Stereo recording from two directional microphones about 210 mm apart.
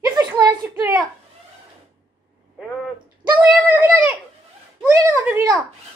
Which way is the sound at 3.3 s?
10° right (ahead or behind).